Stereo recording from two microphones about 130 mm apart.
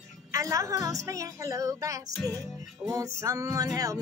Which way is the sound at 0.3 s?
25° right (ahead or behind).